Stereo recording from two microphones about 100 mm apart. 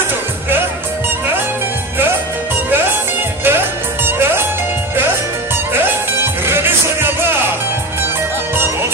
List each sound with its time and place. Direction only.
3.4 s music: 20° right (ahead or behind)
5.7 s music: 20° right (ahead or behind)